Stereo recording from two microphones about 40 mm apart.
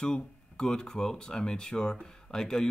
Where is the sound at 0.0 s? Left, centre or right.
Centre.